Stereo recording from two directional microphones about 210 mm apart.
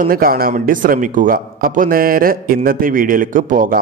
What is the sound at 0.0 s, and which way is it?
A man's voice, 45° right (ahead or behind).